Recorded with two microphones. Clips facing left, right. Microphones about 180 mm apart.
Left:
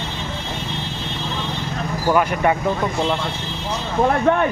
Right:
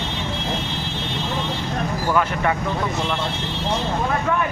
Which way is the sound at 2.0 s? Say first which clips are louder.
Left 4 dB; 20° left (ahead or behind).